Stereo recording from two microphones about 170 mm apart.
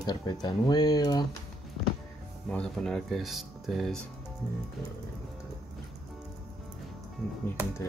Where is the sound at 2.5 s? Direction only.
5° left (ahead or behind).